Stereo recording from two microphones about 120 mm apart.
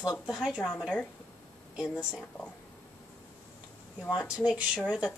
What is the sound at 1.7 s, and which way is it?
Speech, 5° left (ahead or behind).